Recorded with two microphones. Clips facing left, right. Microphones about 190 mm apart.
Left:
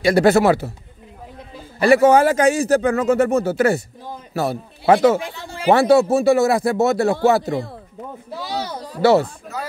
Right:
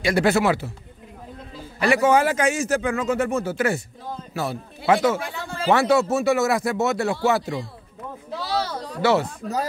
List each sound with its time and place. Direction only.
0.0 s speech: 40° left (ahead or behind)
1.8 s a man's voice: 35° left (ahead or behind)
8.3 s speech: 15° left (ahead or behind)
9.0 s speech: 35° left (ahead or behind)